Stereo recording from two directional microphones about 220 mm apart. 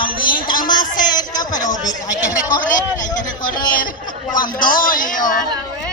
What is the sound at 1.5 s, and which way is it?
Speech, 35° left (ahead or behind).